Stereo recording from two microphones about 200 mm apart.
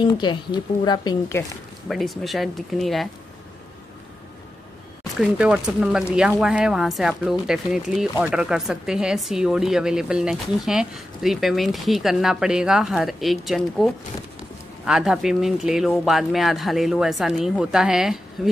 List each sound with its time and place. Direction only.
0.0 s speech: 25° left (ahead or behind)
1.9 s speech: centre (ahead or behind)
5.2 s speech: 5° right (ahead or behind)